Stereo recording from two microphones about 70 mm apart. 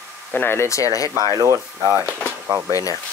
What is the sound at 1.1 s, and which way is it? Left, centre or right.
Speech, right.